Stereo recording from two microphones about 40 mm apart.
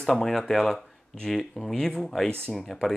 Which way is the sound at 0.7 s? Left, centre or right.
Centre.